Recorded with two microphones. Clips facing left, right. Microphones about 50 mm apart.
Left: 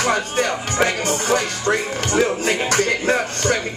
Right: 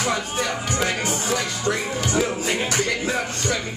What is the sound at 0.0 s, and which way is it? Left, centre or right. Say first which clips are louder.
Music: left 5 dB; left.